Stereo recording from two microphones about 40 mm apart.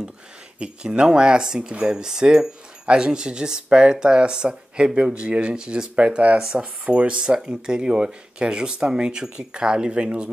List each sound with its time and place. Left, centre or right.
0.6 s speech: right